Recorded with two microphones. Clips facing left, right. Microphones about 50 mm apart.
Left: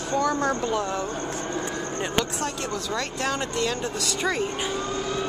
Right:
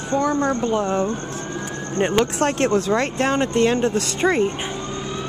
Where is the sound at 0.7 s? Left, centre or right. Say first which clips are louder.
Right 6 dB; right.